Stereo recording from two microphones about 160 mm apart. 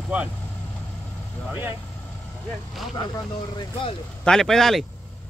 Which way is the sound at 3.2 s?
25° left (ahead or behind).